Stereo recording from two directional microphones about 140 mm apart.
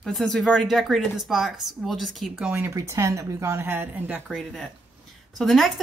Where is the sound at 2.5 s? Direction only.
20° right (ahead or behind).